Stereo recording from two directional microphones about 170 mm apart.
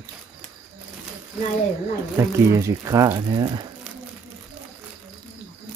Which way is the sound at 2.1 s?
15° right (ahead or behind).